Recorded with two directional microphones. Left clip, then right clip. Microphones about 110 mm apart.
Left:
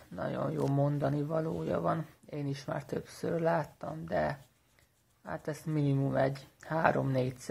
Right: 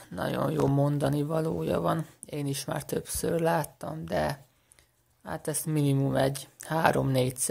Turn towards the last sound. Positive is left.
turn(degrees=-35)  # may be behind; listen again after turning